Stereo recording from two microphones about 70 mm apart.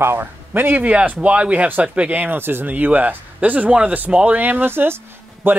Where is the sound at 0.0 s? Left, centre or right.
Right.